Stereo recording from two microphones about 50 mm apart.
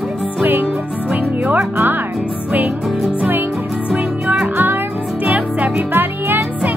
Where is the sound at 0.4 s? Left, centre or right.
Right.